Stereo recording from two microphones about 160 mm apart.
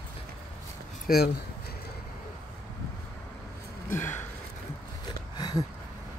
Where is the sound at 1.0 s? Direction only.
70° left (ahead or behind).